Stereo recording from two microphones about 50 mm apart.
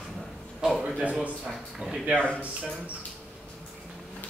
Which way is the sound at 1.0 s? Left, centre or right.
Right.